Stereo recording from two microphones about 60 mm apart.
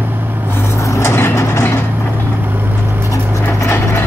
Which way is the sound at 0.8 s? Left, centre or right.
Left.